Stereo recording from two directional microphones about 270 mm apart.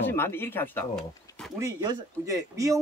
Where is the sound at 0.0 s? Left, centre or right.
Centre.